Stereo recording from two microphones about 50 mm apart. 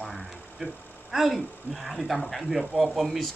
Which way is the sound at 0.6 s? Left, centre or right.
Centre.